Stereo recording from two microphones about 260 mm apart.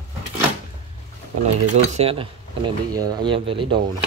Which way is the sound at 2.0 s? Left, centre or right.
Right.